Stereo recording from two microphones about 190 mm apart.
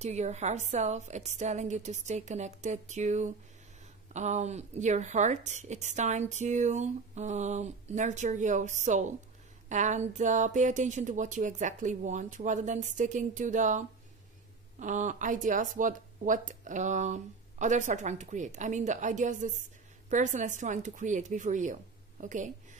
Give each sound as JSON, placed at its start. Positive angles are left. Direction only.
{"t": 0.0, "sound": "speech", "side_deg": -35}